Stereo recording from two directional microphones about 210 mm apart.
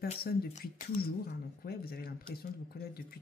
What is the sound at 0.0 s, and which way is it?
A woman's voice, 45° left (ahead or behind).